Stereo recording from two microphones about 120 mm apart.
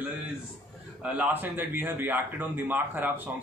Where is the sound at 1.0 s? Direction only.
10° right (ahead or behind).